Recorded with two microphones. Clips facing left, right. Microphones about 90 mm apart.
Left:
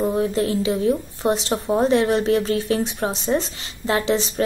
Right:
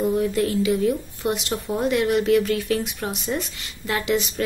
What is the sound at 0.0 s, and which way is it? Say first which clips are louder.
A woman's voice: left 1 dB; 30° left (ahead or behind).